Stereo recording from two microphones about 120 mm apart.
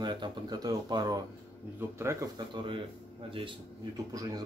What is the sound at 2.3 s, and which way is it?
Speech, 45° right (ahead or behind).